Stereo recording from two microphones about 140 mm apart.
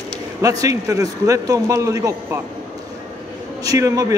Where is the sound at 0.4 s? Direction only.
25° right (ahead or behind).